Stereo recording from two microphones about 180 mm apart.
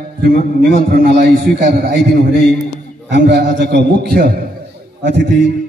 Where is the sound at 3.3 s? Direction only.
70° right (ahead or behind).